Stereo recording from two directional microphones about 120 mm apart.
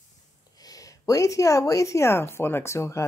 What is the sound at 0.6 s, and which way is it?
A woman's voice, 30° left (ahead or behind).